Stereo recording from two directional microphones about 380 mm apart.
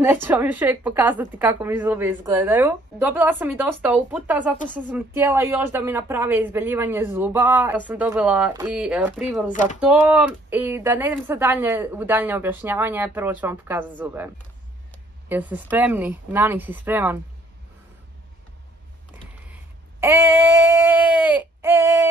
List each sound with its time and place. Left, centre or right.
0.0 s a woman's voice: centre
9.5 s speech: centre
9.8 s a woman's voice: centre
19.4 s a sound: centre